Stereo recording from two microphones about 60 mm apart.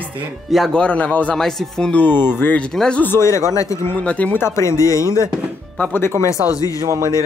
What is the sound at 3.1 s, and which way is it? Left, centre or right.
Speech, left.